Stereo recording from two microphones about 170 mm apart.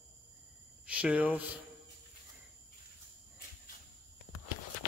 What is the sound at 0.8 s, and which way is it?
Speech, 5° right (ahead or behind).